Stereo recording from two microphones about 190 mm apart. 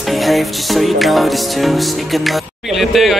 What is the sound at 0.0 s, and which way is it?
Music, centre (ahead or behind).